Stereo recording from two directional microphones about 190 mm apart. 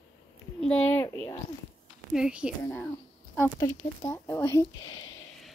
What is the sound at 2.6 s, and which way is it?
Speech, 10° left (ahead or behind).